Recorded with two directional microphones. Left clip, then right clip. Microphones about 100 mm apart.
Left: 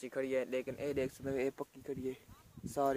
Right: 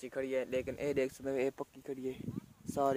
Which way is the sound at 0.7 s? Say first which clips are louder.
Right 3 dB; 90° right.